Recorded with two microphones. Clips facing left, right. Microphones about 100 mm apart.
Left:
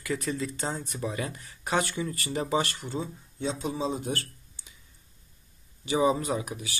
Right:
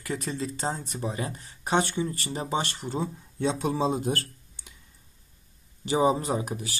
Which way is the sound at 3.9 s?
45° right (ahead or behind).